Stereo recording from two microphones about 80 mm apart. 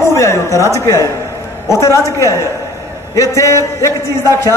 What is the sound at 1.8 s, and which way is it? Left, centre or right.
A man's voice, left.